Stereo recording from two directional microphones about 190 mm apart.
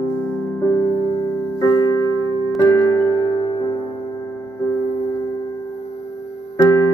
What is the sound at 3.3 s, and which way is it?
Music, 20° left (ahead or behind).